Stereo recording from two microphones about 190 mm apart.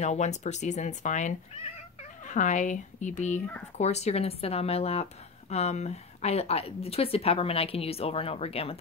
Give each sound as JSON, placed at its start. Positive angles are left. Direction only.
{"t": 0.0, "sound": "a woman's voice", "side_deg": 35}